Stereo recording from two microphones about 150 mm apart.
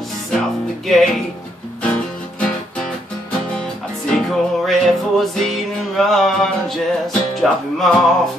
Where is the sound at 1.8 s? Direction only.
5° left (ahead or behind).